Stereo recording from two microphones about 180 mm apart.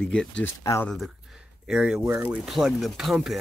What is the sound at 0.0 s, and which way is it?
Speech, 5° left (ahead or behind).